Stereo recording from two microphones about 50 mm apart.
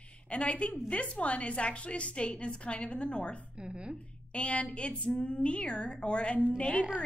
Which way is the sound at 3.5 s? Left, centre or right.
Centre.